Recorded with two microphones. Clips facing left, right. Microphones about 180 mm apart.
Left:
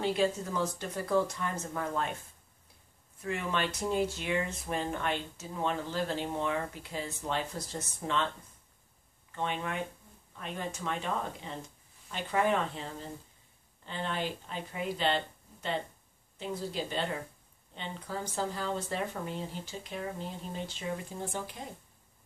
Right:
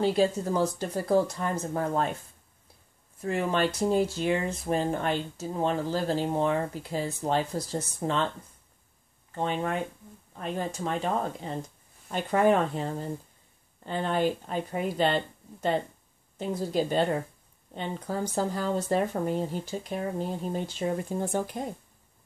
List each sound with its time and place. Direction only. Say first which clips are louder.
0.0 s speech: right 5 dB; 35° right (ahead or behind)
3.2 s speech: right 6 dB; 35° right (ahead or behind)
9.3 s speech: right 6 dB; 35° right (ahead or behind)